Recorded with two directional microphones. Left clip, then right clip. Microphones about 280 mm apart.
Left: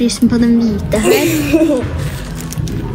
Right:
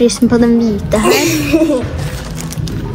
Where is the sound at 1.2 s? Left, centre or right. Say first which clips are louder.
Even; right.